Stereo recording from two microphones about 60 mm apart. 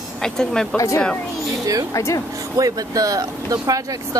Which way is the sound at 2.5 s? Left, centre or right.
Right.